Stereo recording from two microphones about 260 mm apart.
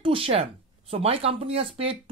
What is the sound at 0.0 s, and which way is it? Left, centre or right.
Speech, right.